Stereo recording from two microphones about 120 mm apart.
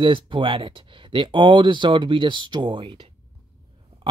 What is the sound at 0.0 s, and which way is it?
Speech, 45° right (ahead or behind).